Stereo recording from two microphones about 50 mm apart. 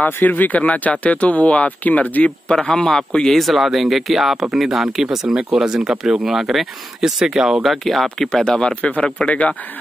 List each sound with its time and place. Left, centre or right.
0.0 s speech: left
2.7 s a man's voice: centre
3.3 s speech: centre
8.5 s speech: centre